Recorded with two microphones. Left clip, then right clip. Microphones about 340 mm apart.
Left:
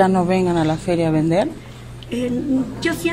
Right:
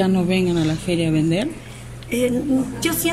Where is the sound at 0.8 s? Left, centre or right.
Centre.